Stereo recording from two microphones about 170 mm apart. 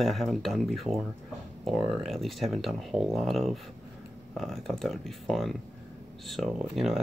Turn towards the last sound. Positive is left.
turn(degrees=0)  # may be behind; listen again after turning